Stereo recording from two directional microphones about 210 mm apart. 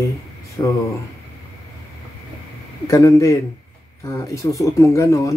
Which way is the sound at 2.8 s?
15° left (ahead or behind).